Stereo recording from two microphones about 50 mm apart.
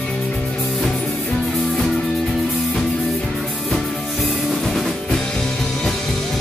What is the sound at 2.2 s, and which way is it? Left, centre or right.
Music, centre.